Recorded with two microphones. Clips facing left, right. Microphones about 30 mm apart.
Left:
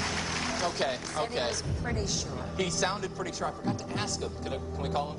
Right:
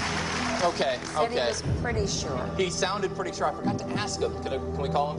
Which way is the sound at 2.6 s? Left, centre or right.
Centre.